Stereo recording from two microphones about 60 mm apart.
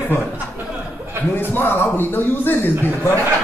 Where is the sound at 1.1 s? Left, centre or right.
Right.